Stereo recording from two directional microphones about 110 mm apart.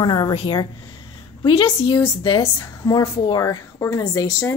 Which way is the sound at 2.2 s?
45° left (ahead or behind).